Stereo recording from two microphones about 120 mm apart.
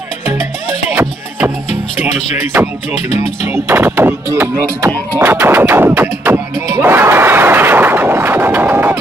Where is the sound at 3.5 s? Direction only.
20° right (ahead or behind).